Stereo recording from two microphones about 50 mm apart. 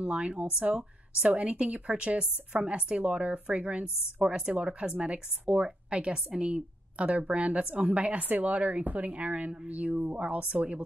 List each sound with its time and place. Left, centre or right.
0.0 s a woman's voice: centre